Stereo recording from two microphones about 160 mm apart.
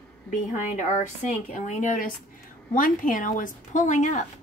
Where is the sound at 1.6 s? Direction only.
50° left (ahead or behind).